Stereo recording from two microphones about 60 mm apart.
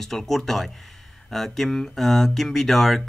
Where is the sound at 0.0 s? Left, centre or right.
Centre.